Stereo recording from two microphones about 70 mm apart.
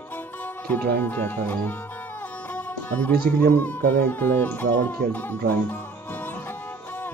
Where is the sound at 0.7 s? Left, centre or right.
Left.